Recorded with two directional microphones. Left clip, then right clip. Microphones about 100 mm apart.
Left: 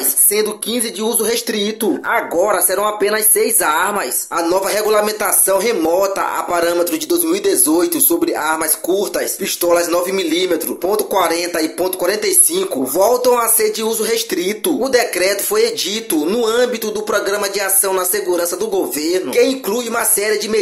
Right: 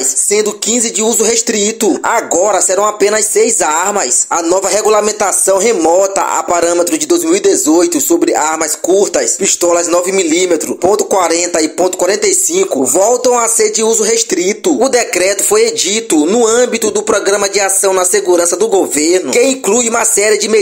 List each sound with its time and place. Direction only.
0.3 s speech: 45° right (ahead or behind); by 20.3 s 70° right (ahead or behind)